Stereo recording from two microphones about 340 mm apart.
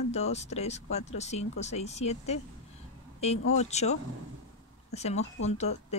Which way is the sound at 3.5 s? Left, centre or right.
Centre.